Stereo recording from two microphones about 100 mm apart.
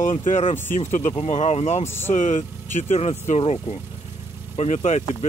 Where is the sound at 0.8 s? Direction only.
90° left.